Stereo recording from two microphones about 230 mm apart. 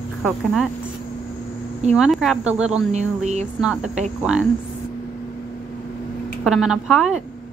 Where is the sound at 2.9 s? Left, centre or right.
Right.